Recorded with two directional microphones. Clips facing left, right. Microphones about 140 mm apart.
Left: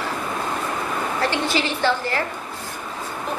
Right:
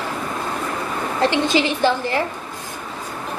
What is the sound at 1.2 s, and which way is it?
A woman's voice, 20° right (ahead or behind).